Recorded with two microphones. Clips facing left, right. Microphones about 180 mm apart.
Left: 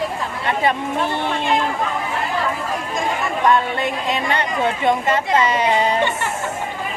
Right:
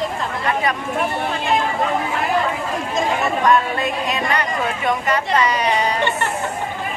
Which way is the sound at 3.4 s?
25° left (ahead or behind).